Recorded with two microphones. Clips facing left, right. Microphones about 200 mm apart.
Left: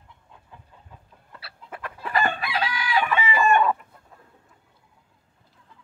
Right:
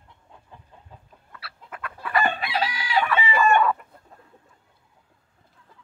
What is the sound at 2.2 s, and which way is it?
Chicken, 25° right (ahead or behind).